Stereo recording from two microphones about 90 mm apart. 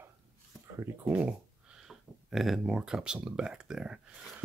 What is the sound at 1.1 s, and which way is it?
Speech, 15° right (ahead or behind).